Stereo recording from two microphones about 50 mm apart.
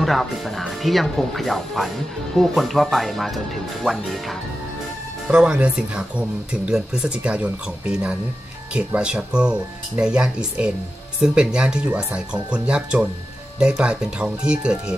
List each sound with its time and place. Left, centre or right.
0.0 s speech: centre
5.3 s speech: centre